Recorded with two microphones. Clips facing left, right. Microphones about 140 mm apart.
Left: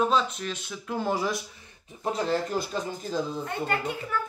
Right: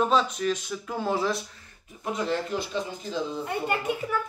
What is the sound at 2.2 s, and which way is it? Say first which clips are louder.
Speech: even; 40° left (ahead or behind).